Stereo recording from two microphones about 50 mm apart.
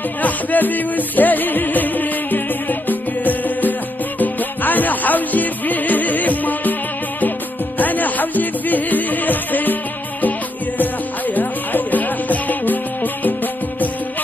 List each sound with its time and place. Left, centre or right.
0.2 s music: left
10.8 s music: left